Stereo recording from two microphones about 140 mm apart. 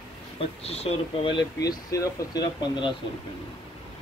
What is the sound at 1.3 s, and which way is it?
Speech, 30° left (ahead or behind).